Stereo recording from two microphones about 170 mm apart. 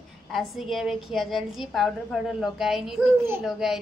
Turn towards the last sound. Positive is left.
turn(degrees=0)  # may be behind; listen again after turning